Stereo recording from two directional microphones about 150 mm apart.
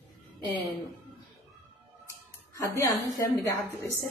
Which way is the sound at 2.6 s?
25° left (ahead or behind).